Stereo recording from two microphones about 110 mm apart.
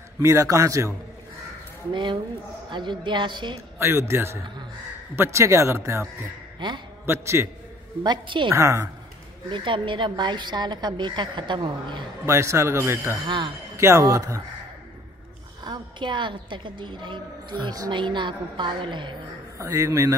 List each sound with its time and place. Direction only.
0.2 s speech: 25° right (ahead or behind)
2.7 s a woman's voice: 45° right (ahead or behind)
3.7 s speech: 20° right (ahead or behind)
6.6 s a woman's voice: 45° right (ahead or behind)
7.1 s speech: 25° right (ahead or behind)
8.0 s a woman's voice: 45° right (ahead or behind)
8.5 s speech: 25° right (ahead or behind)
9.5 s a woman's voice: 50° right (ahead or behind)
12.3 s speech: 25° right (ahead or behind)
13.2 s a woman's voice: 45° right (ahead or behind)
13.7 s speech: 25° right (ahead or behind)
15.6 s a woman's voice: 45° right (ahead or behind)
19.6 s speech: 30° right (ahead or behind)